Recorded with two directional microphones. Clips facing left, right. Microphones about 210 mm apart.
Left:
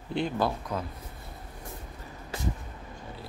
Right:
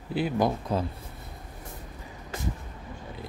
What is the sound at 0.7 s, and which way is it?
Speech, 30° right (ahead or behind).